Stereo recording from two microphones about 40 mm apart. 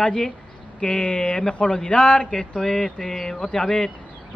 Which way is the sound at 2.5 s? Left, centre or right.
Centre.